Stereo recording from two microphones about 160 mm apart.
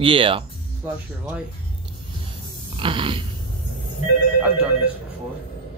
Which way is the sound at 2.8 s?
30° right (ahead or behind).